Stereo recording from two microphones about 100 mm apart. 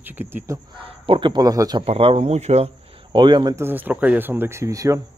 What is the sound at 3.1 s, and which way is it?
Speech, 50° right (ahead or behind).